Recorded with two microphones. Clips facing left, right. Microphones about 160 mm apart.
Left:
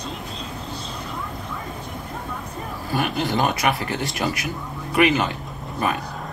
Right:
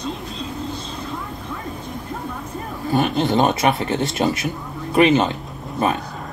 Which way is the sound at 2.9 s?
25° right (ahead or behind).